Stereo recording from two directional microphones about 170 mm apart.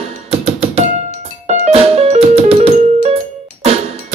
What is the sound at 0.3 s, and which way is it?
Music, 35° right (ahead or behind).